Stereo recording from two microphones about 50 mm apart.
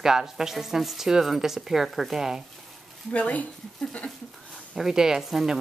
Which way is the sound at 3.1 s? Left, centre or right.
Left.